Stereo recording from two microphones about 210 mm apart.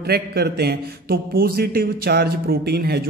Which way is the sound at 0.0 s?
50° right (ahead or behind).